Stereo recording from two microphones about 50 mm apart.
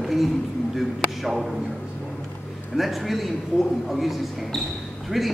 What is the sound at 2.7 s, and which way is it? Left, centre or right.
A man's voice, centre.